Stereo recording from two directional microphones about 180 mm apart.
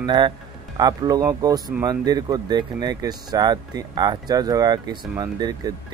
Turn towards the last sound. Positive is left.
turn(degrees=-20)  # may be behind; listen again after turning